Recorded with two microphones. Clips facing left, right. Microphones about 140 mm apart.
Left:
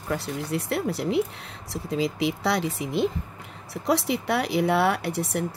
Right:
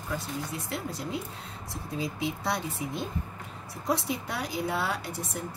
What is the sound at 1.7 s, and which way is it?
Speech, 90° left.